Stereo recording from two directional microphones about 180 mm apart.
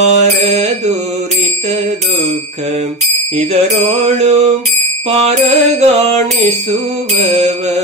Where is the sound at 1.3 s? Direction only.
40° right (ahead or behind).